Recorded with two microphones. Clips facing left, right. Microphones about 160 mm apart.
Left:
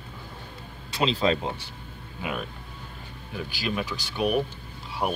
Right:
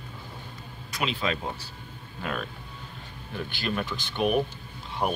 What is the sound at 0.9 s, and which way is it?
Speech, 30° left (ahead or behind).